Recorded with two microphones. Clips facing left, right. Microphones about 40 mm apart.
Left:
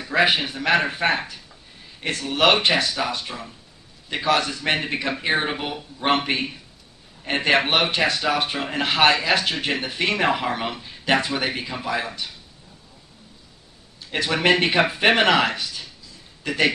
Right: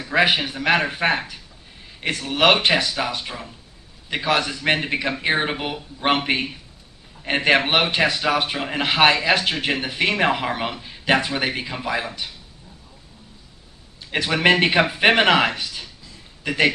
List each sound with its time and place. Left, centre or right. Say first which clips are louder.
0.1 s speech: right 1 dB; centre
2.0 s speech: right 1 dB; right
14.1 s speech: right 2 dB; right